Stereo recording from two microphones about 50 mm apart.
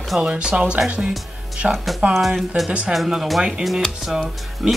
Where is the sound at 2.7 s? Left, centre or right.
Right.